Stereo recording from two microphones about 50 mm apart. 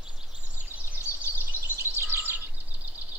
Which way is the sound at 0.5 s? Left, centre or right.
Right.